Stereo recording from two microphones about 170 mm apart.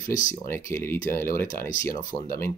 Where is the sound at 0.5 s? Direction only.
15° left (ahead or behind).